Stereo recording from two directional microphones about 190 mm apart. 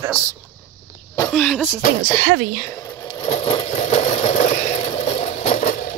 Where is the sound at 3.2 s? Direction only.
30° left (ahead or behind).